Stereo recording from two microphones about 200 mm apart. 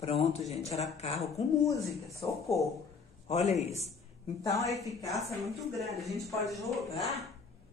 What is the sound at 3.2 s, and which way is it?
Speech, 35° left (ahead or behind).